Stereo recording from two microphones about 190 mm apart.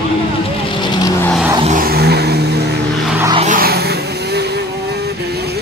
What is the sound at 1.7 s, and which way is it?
Vehicle, 55° right (ahead or behind).